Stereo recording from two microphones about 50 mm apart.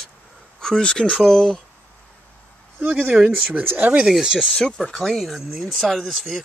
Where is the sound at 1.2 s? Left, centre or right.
Centre.